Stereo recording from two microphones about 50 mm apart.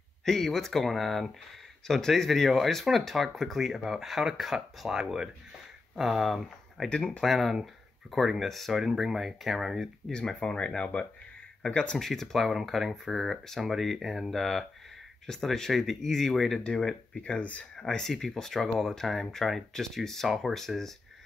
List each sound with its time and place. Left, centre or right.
0.2 s speech: centre
10.1 s speech: centre
12.0 s speech: centre
16.6 s speech: centre
17.4 s speech: left
17.8 s speech: centre